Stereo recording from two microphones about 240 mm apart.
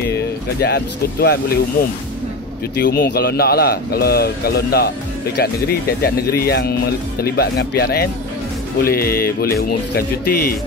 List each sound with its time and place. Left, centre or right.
0.1 s speech: left